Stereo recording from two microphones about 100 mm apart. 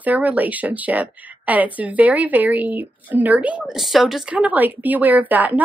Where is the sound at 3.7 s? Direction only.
Centre (ahead or behind).